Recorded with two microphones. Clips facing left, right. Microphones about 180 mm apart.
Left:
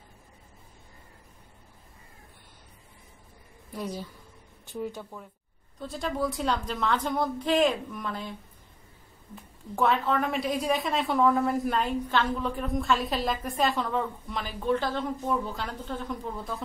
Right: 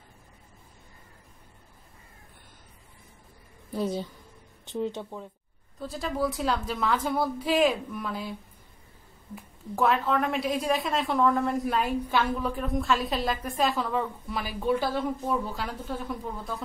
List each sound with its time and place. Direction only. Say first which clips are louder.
3.7 s speech: right 5 dB; 25° right (ahead or behind)
5.8 s a woman's voice: right 1 dB; centre (ahead or behind)